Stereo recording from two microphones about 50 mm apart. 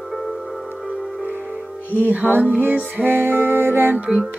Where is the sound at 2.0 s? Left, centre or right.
Right.